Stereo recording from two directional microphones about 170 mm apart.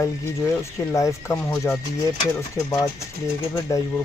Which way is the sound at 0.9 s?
20° left (ahead or behind).